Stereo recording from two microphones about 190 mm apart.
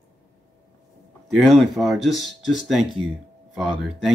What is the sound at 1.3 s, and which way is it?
Speech, centre (ahead or behind).